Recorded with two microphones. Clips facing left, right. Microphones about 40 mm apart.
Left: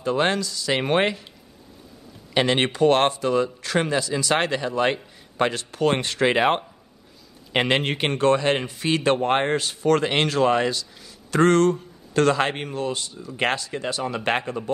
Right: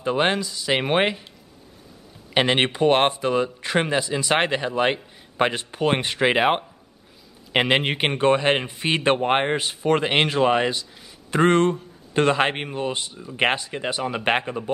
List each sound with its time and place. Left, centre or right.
0.0 s speech: right
2.3 s speech: right